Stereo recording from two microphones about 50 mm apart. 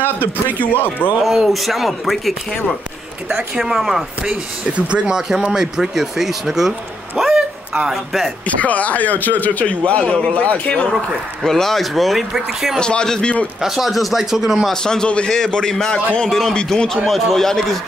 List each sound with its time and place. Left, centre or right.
0.0 s speech: right
0.6 s speech: left
1.2 s speech: centre
3.5 s speech: centre
4.3 s speech: right; by 8.3 s centre
8.5 s a man's voice: left
11.4 s speech: centre
12.7 s a man's voice: centre
13.6 s speech: centre
14.7 s a man's voice: centre